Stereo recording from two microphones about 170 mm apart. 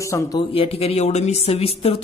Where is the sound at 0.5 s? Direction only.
35° left (ahead or behind).